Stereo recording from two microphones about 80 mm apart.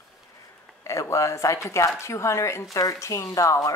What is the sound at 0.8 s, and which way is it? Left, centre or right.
Speech, left.